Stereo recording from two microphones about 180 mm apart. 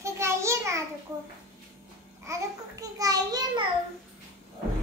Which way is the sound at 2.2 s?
15° right (ahead or behind).